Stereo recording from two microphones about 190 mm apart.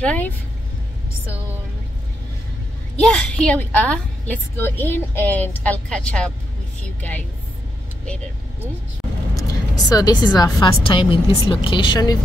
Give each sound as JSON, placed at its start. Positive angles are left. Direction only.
{"t": 0.0, "sound": "a woman's voice", "side_deg": 5}
{"t": 3.0, "sound": "a woman's voice", "side_deg": 5}
{"t": 9.3, "sound": "speech", "side_deg": 20}